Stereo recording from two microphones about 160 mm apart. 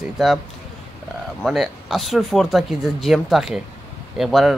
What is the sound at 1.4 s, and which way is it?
Speech, centre (ahead or behind).